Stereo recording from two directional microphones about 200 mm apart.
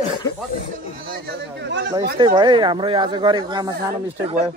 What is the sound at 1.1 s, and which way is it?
Speech, 55° right (ahead or behind).